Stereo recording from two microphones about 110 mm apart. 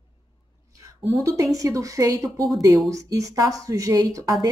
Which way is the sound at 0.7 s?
30° right (ahead or behind).